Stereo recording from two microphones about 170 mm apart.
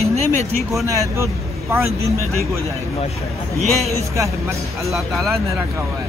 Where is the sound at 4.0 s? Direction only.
20° right (ahead or behind).